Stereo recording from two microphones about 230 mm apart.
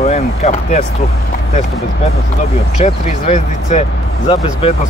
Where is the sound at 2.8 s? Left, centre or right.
Left.